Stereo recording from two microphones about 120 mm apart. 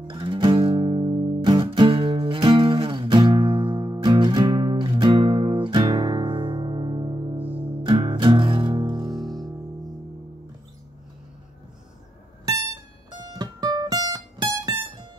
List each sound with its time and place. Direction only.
0.0 s music: 45° right (ahead or behind)
7.3 s music: 15° right (ahead or behind)
7.6 s music: 40° right (ahead or behind)
9.2 s music: centre (ahead or behind)
13.1 s music: 35° right (ahead or behind)